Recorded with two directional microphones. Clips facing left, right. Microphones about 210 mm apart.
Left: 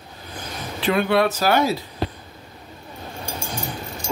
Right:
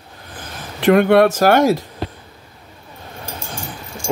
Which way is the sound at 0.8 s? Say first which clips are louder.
Right 8 dB; 55° right (ahead or behind).